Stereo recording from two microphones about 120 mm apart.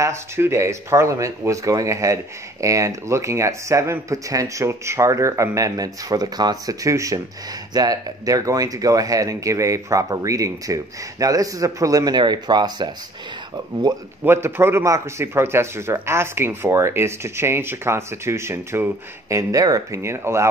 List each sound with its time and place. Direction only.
0.0 s speech: 20° right (ahead or behind)
14.2 s speech: 20° right (ahead or behind)